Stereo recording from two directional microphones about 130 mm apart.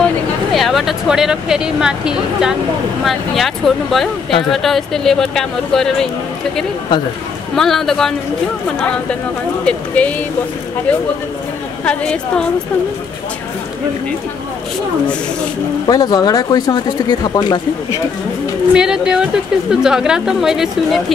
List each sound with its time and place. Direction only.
0.5 s speech: centre (ahead or behind)
7.5 s speech: 5° left (ahead or behind)
9.7 s a woman's voice: 10° left (ahead or behind)
15.9 s speech: 30° left (ahead or behind)
18.7 s speech: 5° right (ahead or behind)